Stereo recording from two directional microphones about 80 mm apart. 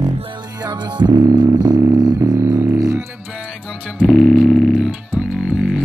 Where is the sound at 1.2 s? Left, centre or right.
Right.